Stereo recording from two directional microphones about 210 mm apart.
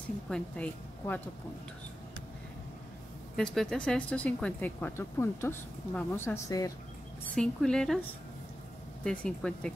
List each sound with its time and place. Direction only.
0.3 s speech: 5° left (ahead or behind)
3.3 s speech: 5° left (ahead or behind)
7.3 s speech: 5° left (ahead or behind)
9.0 s speech: 5° left (ahead or behind)